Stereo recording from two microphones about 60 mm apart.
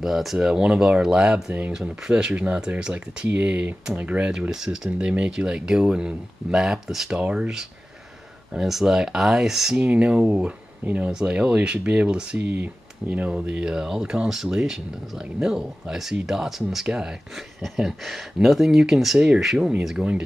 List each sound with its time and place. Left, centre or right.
0.0 s speech: centre; by 1.7 s right
1.7 s speech: centre
4.3 s speech: centre
9.8 s speech: right
12.4 s speech: right
13.3 s speech: centre
17.6 s speech: centre
19.1 s speech: centre
19.4 s speech: centre